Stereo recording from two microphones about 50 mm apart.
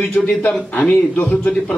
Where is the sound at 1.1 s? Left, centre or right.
Left.